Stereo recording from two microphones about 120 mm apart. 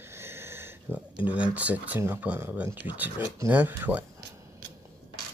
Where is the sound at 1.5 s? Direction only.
10° right (ahead or behind).